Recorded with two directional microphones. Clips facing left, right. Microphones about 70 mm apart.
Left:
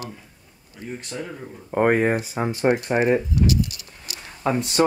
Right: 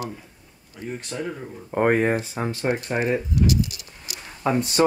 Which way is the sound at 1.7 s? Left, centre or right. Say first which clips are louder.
Left 1 dB; centre.